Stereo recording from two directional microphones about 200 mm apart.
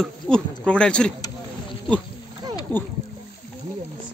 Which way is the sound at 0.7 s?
5° left (ahead or behind).